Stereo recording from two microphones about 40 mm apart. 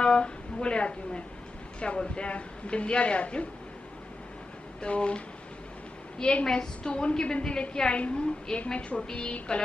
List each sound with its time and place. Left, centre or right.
0.0 s a sound: left
1.8 s a woman's voice: left
4.8 s a woman's voice: left